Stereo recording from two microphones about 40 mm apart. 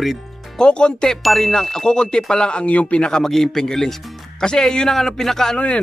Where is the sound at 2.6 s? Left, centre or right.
Left.